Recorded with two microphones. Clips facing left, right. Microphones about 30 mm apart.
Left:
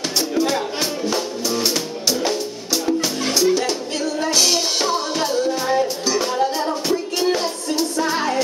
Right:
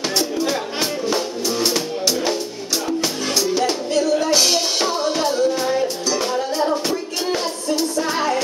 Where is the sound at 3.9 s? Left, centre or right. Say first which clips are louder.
Right 4 dB; centre.